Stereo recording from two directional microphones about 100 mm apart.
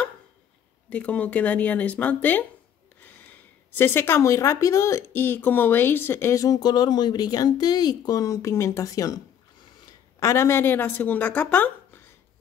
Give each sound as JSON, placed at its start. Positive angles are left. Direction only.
{"t": 0.8, "sound": "speech", "side_deg": 15}
{"t": 3.7, "sound": "speech", "side_deg": 20}
{"t": 6.4, "sound": "speech", "side_deg": 40}